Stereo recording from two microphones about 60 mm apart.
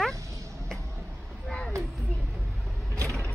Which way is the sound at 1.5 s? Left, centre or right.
Centre.